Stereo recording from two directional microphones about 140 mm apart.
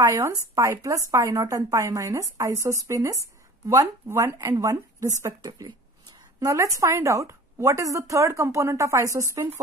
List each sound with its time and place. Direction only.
0.1 s a woman's voice: 25° right (ahead or behind)